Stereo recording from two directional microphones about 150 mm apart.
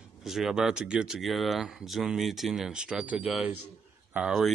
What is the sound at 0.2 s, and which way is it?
Speech, centre (ahead or behind).